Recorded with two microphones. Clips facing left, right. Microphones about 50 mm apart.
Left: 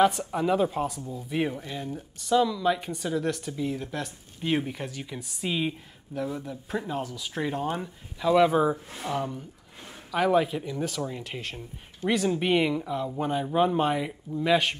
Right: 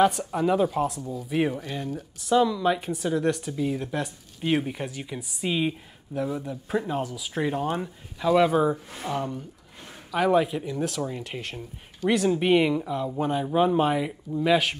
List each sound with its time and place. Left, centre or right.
0.0 s speech: centre
1.5 s speech: right
2.2 s speech: centre
8.4 s speech: centre